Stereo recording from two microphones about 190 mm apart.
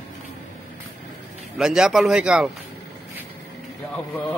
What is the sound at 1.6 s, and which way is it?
Speech, 5° right (ahead or behind).